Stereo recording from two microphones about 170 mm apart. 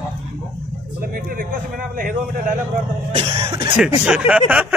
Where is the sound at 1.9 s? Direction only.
50° right (ahead or behind).